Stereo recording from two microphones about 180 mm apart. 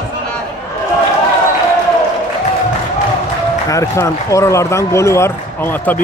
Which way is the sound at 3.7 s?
15° left (ahead or behind).